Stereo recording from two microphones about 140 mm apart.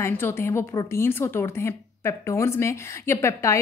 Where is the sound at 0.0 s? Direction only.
20° left (ahead or behind).